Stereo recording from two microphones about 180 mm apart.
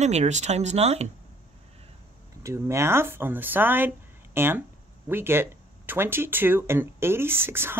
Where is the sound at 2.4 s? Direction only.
15° right (ahead or behind).